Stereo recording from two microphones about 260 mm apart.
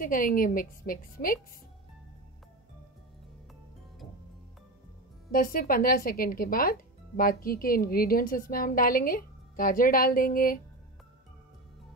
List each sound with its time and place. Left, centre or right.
0.0 s speech: left
5.3 s speech: left